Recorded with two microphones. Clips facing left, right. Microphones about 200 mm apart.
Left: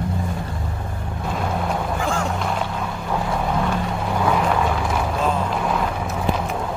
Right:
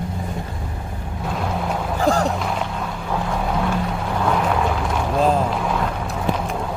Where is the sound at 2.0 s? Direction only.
35° right (ahead or behind).